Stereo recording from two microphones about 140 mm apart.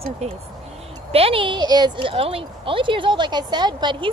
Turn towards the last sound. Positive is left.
turn(degrees=-35)  # may be behind; listen again after turning